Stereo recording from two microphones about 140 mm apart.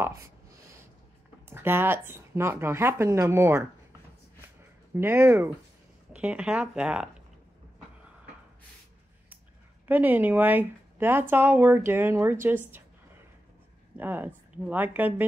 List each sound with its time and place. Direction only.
1.5 s a woman's voice: 15° right (ahead or behind)
4.6 s a sound: 15° right (ahead or behind)
6.1 s a woman's voice: 10° right (ahead or behind)
9.8 s a woman's voice: 10° right (ahead or behind)
13.9 s a woman's voice: 15° right (ahead or behind)